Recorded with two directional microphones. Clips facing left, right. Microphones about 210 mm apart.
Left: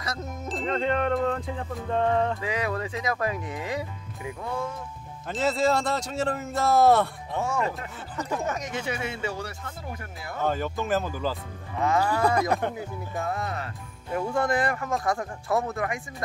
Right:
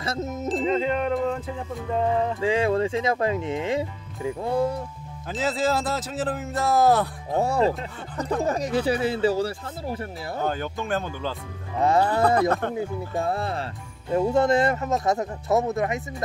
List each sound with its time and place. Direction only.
0.0 s speech: 25° right (ahead or behind)
0.5 s music: centre (ahead or behind)
2.4 s speech: 30° right (ahead or behind)
5.3 s music: centre (ahead or behind)
7.3 s speech: 35° right (ahead or behind)
10.4 s music: centre (ahead or behind)
12.2 s speech: 15° left (ahead or behind)
12.7 s speech: 30° right (ahead or behind)